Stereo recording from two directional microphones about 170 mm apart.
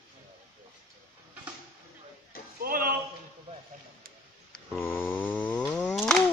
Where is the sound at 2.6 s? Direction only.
55° right (ahead or behind).